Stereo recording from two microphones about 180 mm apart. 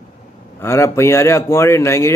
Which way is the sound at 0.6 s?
15° left (ahead or behind).